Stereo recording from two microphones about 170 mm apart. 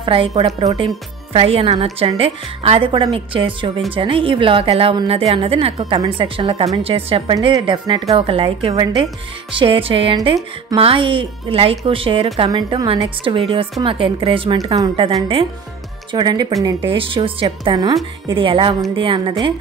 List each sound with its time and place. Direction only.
0.0 s a woman's voice: 30° right (ahead or behind)